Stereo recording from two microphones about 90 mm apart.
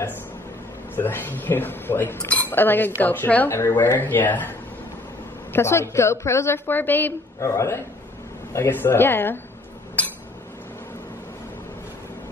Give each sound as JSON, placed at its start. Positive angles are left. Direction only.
{"t": 0.9, "sound": "speech", "side_deg": 25}
{"t": 5.5, "sound": "speech", "side_deg": 30}
{"t": 7.3, "sound": "a woman's voice", "side_deg": 35}
{"t": 10.0, "sound": "a sound", "side_deg": 15}